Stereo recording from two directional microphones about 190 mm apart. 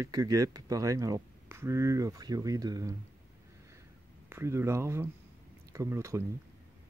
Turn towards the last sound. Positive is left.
turn(degrees=-15)  # may be behind; listen again after turning